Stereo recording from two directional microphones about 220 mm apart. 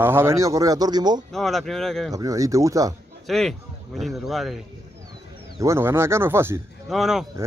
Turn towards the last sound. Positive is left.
turn(degrees=0)  # may be behind; listen again after turning